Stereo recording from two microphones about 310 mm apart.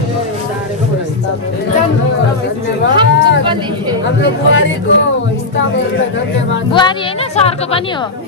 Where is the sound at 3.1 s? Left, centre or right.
Left.